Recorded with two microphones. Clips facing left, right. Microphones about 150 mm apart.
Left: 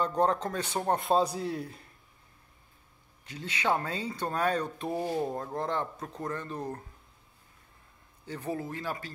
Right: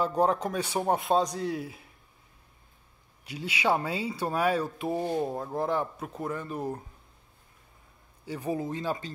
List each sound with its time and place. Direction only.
0.0 s a man's voice: 10° right (ahead or behind)
3.3 s a man's voice: 10° right (ahead or behind); by 5.3 s 5° left (ahead or behind)
5.3 s a man's voice: 5° right (ahead or behind)
8.3 s speech: 10° right (ahead or behind)